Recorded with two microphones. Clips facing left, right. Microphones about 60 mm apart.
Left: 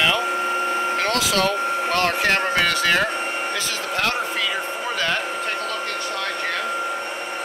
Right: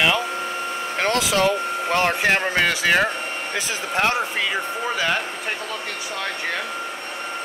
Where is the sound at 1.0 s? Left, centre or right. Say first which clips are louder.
Right 5 dB; right.